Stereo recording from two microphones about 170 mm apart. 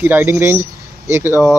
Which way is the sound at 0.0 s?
10° right (ahead or behind).